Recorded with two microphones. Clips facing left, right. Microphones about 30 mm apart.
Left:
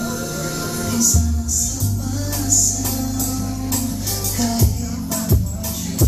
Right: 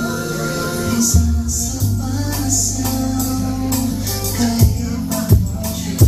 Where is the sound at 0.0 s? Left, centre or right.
Centre.